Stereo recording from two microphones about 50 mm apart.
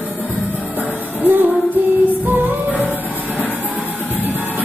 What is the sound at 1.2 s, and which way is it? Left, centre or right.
Music, right.